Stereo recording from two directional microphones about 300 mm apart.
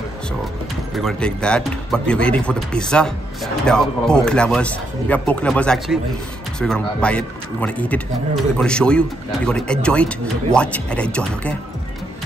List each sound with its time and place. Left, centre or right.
0.9 s speech: centre